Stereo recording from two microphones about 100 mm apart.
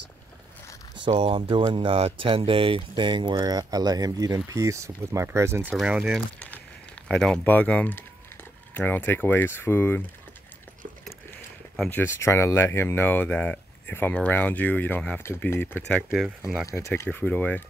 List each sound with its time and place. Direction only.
1.0 s speech: 60° right (ahead or behind)
3.0 s speech: 50° right (ahead or behind); by 5.7 s 25° right (ahead or behind)
5.8 s speech: 5° right (ahead or behind)
7.1 s speech: 10° left (ahead or behind)
11.9 s speech: 25° left (ahead or behind)
16.1 s speech: 5° right (ahead or behind)
16.6 s speech: 30° left (ahead or behind)
16.9 s speech: 20° left (ahead or behind)